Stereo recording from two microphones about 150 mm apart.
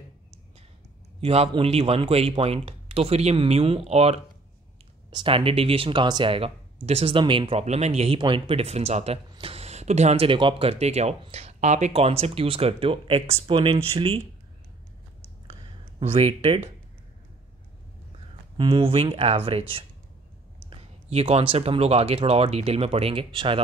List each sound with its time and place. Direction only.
1.2 s speech: 40° right (ahead or behind)
16.0 s speech: 40° right (ahead or behind)
18.6 s speech: 35° right (ahead or behind)
20.7 s speech: 40° right (ahead or behind)